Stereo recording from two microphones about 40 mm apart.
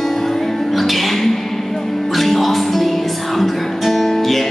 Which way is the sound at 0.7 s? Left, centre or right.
Centre.